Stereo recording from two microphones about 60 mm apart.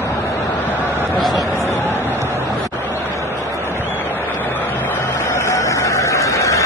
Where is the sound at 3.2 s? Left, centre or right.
Right.